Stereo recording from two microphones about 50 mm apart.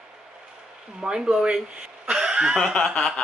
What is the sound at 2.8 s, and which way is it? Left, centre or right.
Speech, centre.